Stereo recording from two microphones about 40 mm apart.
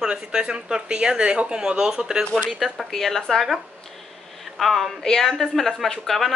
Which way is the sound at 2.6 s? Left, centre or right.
Centre.